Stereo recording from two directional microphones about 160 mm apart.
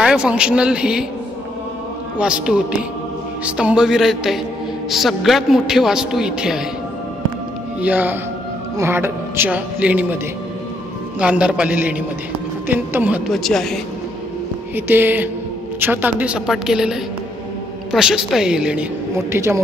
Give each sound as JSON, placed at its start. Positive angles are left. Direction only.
{"t": 0.0, "sound": "a man's voice", "side_deg": -5}
{"t": 2.1, "sound": "a man's voice", "side_deg": -5}
{"t": 7.8, "sound": "speech", "side_deg": -10}
{"t": 11.1, "sound": "speech", "side_deg": -5}
{"t": 13.4, "sound": "a man's voice", "side_deg": 0}
{"t": 14.9, "sound": "a man's voice", "side_deg": -10}
{"t": 19.1, "sound": "speech", "side_deg": -15}